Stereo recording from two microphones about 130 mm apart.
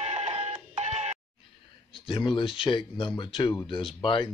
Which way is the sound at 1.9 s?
40° left (ahead or behind).